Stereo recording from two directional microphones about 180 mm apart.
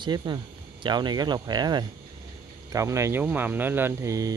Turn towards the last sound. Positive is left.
turn(degrees=-20)  # may be behind; listen again after turning